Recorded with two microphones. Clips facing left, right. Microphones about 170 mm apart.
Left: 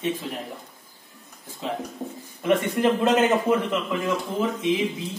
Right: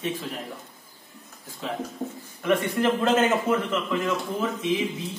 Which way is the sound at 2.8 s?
15° left (ahead or behind).